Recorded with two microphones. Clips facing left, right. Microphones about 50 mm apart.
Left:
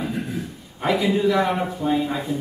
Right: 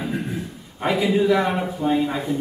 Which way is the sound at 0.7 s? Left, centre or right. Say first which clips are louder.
Right 1 dB; centre.